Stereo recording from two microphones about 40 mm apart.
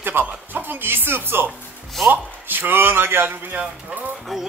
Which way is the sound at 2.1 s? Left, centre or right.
Right.